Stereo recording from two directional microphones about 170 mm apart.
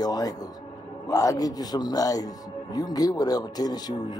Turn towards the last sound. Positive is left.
turn(degrees=25)  # may be behind; listen again after turning